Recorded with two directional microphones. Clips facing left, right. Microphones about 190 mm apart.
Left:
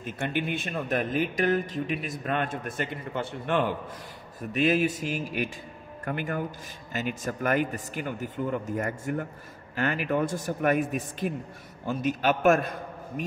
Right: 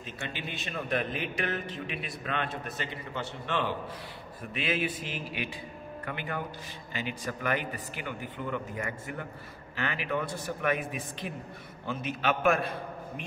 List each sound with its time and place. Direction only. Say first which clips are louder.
0.0 s a man's voice: left 9 dB; 50° left (ahead or behind)